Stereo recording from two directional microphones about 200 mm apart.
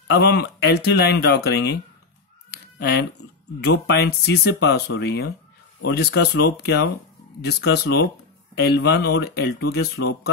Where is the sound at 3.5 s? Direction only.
55° left (ahead or behind).